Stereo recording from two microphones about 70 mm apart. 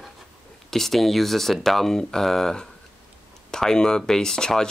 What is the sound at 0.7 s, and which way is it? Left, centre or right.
Speech, centre.